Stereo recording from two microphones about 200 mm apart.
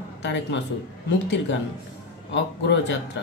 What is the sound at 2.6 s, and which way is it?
Speech, 60° left (ahead or behind).